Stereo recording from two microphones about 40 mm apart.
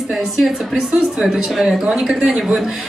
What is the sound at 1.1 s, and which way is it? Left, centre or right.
A woman's voice, centre.